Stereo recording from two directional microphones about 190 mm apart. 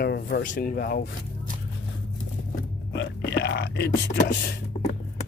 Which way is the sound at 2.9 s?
60° left (ahead or behind).